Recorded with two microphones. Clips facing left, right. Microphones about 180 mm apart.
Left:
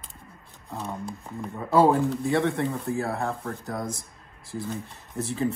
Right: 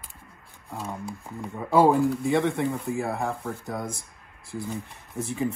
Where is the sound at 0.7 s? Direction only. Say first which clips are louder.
Left 1 dB; 10° right (ahead or behind).